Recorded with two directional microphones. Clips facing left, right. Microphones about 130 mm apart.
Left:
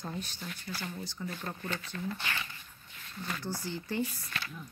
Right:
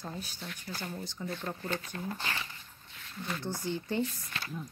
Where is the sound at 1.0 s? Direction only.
20° right (ahead or behind).